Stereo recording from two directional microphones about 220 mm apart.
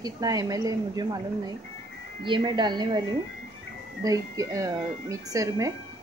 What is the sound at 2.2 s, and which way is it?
Speech, 20° right (ahead or behind).